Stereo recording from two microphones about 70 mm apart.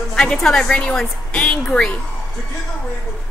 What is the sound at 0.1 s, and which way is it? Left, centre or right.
A woman's voice, centre.